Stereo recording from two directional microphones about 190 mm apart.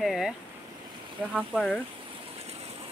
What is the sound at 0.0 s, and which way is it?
Speech, centre (ahead or behind).